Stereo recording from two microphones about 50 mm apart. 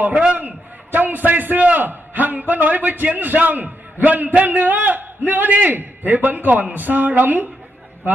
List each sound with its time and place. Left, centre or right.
0.4 s a man's voice: right